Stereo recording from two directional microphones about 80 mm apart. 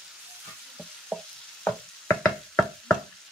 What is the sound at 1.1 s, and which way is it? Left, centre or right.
Stir, centre.